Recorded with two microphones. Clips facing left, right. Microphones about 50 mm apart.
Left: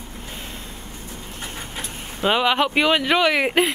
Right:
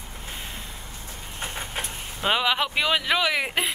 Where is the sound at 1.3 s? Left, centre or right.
Right.